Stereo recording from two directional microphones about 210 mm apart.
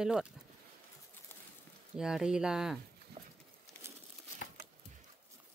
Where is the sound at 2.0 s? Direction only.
5° right (ahead or behind).